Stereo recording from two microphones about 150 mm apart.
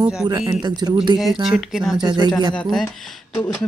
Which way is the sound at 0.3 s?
30° right (ahead or behind).